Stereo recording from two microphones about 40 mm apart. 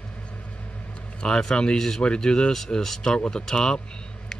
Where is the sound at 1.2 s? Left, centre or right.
Centre.